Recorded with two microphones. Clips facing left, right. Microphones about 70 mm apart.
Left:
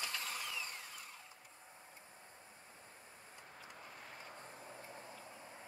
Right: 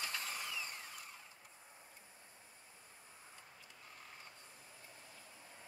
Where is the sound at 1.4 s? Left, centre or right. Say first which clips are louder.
Left 2 dB; centre.